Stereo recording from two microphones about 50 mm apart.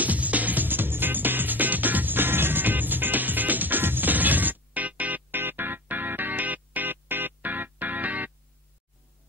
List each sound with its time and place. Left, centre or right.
0.0 s music: right